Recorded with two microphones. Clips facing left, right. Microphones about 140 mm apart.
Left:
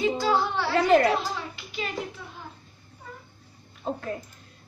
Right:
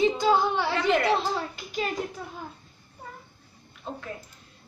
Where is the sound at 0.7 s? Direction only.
40° left (ahead or behind).